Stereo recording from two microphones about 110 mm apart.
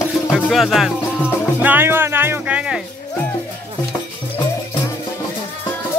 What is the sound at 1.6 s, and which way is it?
Music, 20° right (ahead or behind).